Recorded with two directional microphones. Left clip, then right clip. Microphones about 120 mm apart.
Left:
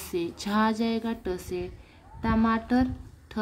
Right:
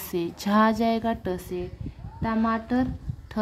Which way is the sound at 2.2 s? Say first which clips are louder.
Even; 10° right (ahead or behind).